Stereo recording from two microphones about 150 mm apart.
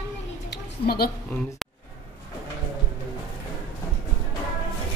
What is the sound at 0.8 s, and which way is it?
Speech, 90° left.